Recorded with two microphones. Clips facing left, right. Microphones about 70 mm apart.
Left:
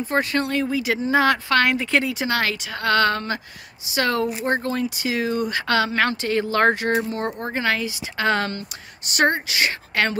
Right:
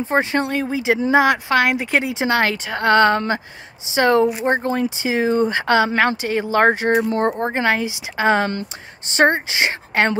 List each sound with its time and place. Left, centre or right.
0.1 s a woman's voice: right
1.2 s speech: centre
2.1 s a woman's voice: right
7.1 s a woman's voice: right
8.5 s a woman's voice: right